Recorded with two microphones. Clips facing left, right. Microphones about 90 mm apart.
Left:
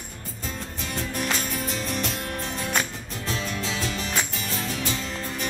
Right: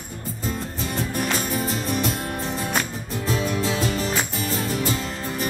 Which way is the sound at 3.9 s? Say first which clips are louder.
Right 6 dB; 45° right (ahead or behind).